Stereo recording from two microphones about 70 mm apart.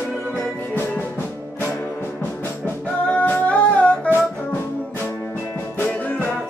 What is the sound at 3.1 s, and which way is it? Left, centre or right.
Music, left.